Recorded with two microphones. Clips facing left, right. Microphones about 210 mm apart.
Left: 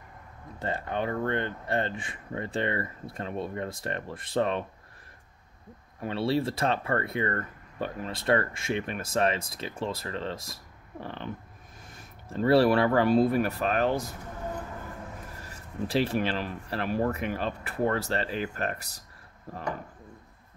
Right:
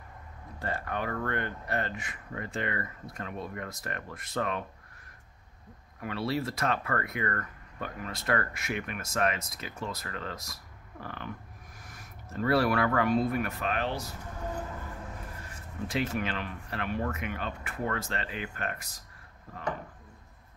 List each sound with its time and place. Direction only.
0.6 s speech: 25° left (ahead or behind)
5.9 s speech: 30° left (ahead or behind); by 14.1 s 50° left (ahead or behind)
15.9 s speech: 35° left (ahead or behind)